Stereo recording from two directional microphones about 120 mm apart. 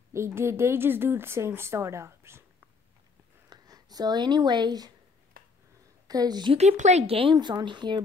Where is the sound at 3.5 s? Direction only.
35° right (ahead or behind).